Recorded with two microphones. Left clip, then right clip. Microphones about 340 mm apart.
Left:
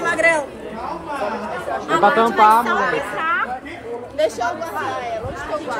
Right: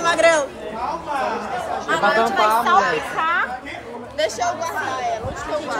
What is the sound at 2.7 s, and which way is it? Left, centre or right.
Speech, right.